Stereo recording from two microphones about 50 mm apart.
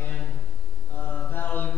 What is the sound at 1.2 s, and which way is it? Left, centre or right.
Mantra, left.